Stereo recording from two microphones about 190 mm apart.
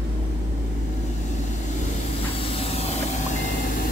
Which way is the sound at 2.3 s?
30° left (ahead or behind).